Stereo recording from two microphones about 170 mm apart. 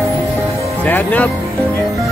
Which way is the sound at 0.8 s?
10° left (ahead or behind).